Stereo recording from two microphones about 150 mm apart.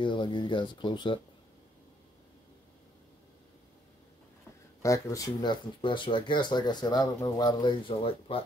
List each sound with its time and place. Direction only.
0.0 s speech: 30° left (ahead or behind)
4.8 s speech: 20° left (ahead or behind); by 8.5 s 40° left (ahead or behind)